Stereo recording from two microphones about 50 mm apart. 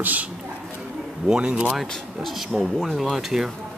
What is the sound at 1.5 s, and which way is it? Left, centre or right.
Speech, right.